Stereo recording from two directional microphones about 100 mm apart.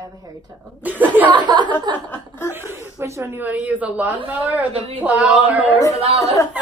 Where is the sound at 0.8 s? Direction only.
15° right (ahead or behind).